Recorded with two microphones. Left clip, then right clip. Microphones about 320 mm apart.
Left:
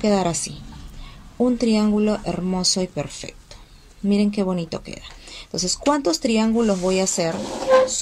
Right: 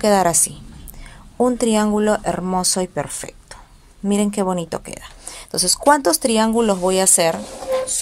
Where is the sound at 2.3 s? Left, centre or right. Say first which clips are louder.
Right 6 dB; right.